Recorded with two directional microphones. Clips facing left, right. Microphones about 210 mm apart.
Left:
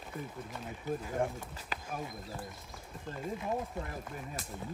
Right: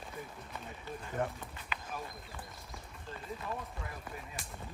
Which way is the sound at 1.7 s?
40° left (ahead or behind).